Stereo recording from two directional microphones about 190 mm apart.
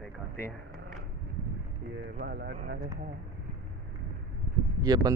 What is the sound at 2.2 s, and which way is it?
Speech, 60° right (ahead or behind).